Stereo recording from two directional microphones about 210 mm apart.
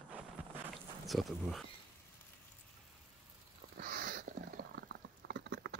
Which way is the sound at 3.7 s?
45° right (ahead or behind).